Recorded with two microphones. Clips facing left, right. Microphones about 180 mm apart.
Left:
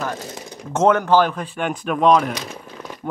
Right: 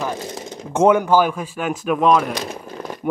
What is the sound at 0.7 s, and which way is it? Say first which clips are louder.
Speech: right 1 dB; 10° right (ahead or behind).